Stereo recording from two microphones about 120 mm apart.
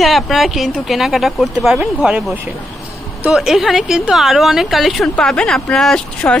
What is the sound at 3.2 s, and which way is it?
Speech, 5° right (ahead or behind).